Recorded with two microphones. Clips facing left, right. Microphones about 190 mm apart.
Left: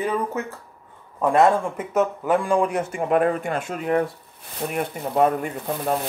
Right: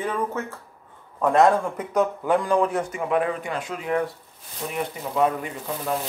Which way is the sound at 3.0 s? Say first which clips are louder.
Left 5 dB; 50° left (ahead or behind).